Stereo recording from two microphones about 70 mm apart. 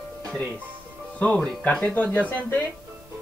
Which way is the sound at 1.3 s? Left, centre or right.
Centre.